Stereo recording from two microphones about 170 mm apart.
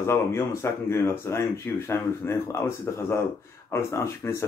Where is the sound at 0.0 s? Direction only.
15° left (ahead or behind).